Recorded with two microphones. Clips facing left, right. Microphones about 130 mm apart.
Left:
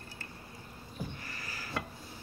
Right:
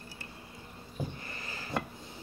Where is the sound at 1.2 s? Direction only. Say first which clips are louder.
Right 1 dB; 25° right (ahead or behind).